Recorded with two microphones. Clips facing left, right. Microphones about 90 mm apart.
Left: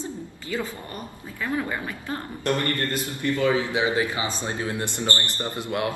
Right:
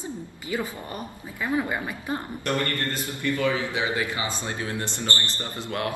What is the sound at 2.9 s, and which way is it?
A man's voice, 20° left (ahead or behind).